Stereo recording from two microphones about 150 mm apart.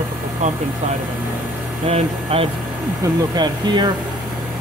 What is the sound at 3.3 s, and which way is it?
Speech, 30° right (ahead or behind).